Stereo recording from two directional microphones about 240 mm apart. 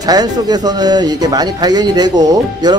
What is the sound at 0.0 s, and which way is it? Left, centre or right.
Speech, centre.